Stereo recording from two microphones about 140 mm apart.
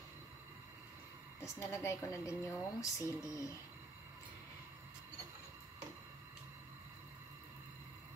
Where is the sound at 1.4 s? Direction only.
20° left (ahead or behind).